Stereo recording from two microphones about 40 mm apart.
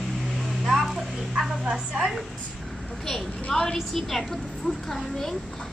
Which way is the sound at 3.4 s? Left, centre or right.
Centre.